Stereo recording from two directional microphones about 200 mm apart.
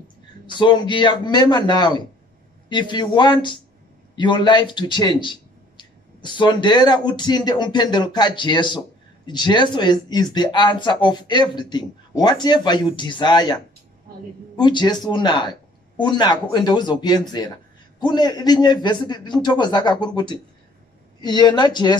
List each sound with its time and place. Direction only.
0.5 s speech: 25° left (ahead or behind)
14.6 s speech: 20° left (ahead or behind)